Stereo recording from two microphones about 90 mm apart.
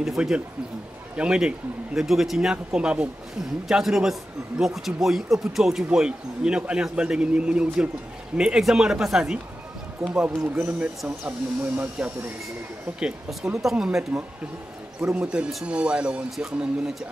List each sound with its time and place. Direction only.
0.0 s speech: 5° right (ahead or behind)
13.0 s speech: 5° right (ahead or behind)
15.1 s speech: 15° right (ahead or behind)